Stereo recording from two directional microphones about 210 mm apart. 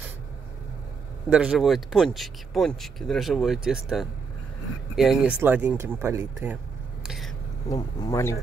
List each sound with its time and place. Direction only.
1.3 s speech: 5° right (ahead or behind)
7.7 s speech: 15° left (ahead or behind)